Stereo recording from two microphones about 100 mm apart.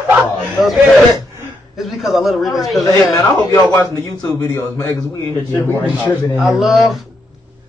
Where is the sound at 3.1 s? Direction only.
35° left (ahead or behind).